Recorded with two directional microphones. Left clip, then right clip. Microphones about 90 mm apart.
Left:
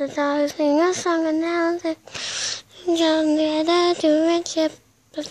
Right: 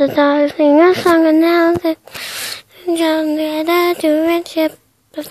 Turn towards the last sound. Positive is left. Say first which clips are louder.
# right 4 dB
turn(degrees=-20)  # may be behind; listen again after turning